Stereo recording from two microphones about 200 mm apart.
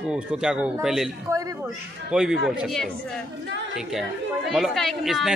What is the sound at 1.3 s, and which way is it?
Speech, 15° right (ahead or behind).